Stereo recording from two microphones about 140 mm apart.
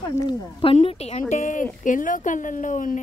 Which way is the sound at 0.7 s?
45° left (ahead or behind).